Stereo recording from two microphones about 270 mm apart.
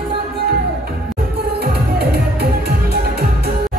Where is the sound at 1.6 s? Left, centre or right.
Right.